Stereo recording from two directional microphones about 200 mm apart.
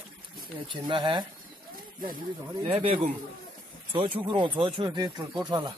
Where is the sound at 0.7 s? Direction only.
25° right (ahead or behind).